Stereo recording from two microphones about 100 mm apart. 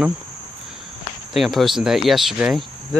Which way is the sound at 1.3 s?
Centre (ahead or behind).